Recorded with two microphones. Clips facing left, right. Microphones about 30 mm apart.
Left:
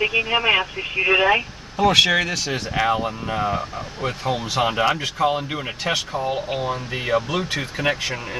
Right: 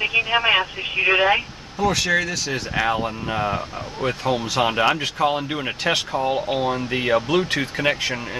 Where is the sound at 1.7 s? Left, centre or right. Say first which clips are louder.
Left 4 dB; left.